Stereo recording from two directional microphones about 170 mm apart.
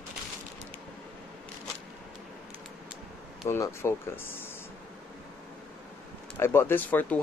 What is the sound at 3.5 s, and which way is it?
Speech, 15° left (ahead or behind).